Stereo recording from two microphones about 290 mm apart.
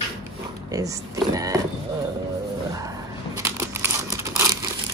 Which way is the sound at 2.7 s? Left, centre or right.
Centre.